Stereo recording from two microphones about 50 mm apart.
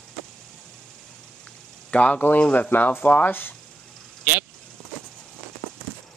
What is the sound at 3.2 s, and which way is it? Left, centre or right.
Speech, left.